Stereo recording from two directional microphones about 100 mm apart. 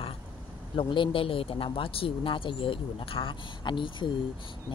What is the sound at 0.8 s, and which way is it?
A woman's voice, 60° left (ahead or behind).